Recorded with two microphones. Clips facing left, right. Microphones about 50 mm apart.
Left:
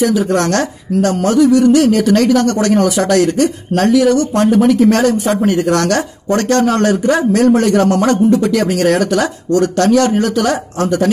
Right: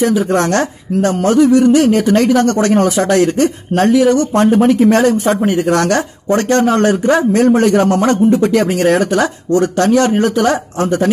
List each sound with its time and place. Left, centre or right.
0.0 s speech: right